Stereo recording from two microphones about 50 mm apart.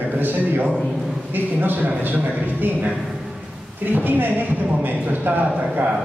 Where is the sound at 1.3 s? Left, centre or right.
Right.